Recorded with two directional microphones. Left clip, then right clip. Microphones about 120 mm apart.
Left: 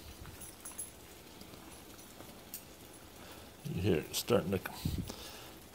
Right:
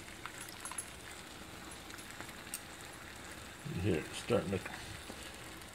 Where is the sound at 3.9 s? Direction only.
30° left (ahead or behind).